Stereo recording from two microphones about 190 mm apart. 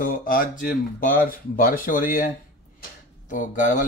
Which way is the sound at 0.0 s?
45° left (ahead or behind).